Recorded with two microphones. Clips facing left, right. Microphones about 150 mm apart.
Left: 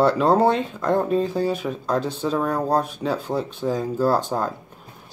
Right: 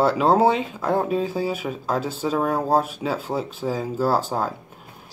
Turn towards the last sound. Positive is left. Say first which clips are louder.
# left 1 dB
turn(degrees=-5)  # may be behind; listen again after turning